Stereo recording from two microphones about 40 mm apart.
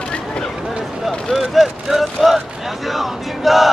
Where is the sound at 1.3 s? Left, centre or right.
Centre.